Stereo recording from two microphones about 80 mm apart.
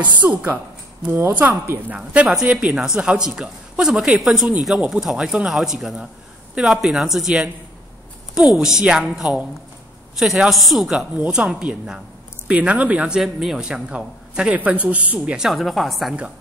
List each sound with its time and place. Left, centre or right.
0.2 s a woman's voice: right
1.9 s a man's voice: centre
13.2 s speech: centre
15.3 s a man's voice: centre